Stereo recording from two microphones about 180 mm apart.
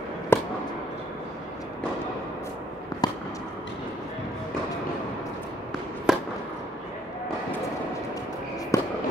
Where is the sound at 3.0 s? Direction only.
20° left (ahead or behind).